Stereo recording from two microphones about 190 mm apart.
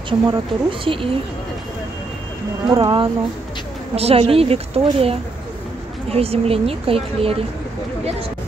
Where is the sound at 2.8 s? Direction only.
25° right (ahead or behind).